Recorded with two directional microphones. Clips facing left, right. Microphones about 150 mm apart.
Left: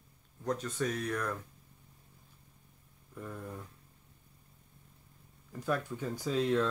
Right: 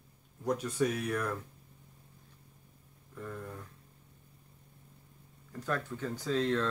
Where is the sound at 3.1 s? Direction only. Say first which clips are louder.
Even; 10° left (ahead or behind).